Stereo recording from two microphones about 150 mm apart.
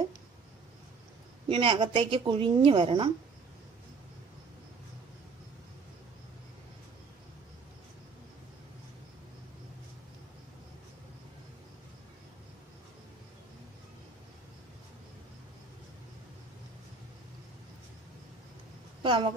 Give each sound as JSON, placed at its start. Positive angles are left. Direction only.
{"t": 1.5, "sound": "a woman's voice", "side_deg": -35}
{"t": 19.0, "sound": "a woman's voice", "side_deg": -35}